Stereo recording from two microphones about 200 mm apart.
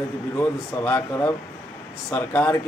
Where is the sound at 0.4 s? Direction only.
10° left (ahead or behind).